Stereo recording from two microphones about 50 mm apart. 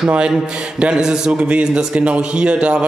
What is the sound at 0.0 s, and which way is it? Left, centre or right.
A man's voice, centre.